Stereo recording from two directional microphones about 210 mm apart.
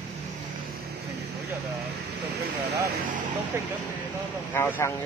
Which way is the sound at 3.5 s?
10° right (ahead or behind).